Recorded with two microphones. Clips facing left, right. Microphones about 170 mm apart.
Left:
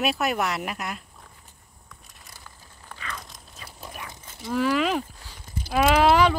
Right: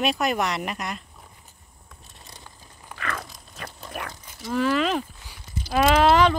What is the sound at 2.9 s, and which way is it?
Dog, 65° right (ahead or behind).